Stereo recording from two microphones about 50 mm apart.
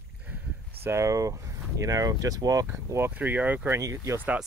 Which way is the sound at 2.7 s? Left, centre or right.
Right.